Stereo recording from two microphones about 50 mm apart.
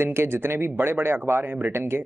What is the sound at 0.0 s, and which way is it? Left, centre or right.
Speech, right.